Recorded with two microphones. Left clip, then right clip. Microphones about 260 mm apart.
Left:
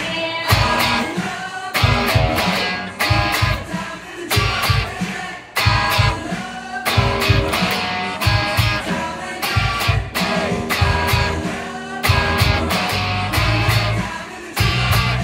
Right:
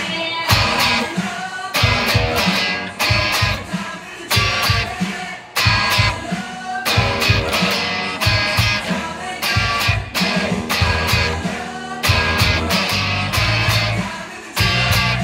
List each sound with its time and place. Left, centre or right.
0.6 s music: right